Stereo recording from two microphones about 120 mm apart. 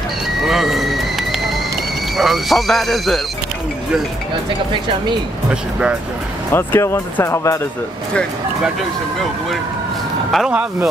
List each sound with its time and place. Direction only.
0.5 s a sound: centre (ahead or behind)
2.1 s speech: centre (ahead or behind)
5.5 s speech: 10° right (ahead or behind)
6.5 s speech: 20° left (ahead or behind)
10.3 s speech: 5° right (ahead or behind)